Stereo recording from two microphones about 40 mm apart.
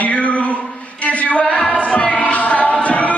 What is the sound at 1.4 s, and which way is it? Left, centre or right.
Music, left.